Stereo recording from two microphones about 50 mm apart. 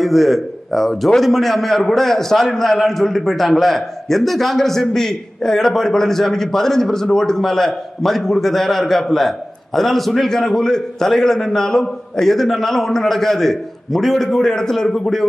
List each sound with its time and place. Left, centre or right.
0.0 s a man's voice: centre